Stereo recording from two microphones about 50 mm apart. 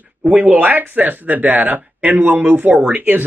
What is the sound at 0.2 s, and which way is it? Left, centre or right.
Speech, right.